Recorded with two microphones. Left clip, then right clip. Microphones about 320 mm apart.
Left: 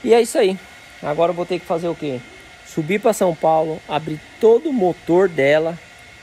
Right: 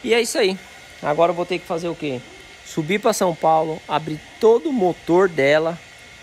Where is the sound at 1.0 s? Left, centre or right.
Centre.